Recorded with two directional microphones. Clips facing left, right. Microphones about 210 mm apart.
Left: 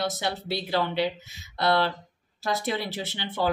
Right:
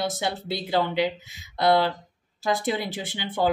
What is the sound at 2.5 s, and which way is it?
Speech, 20° right (ahead or behind).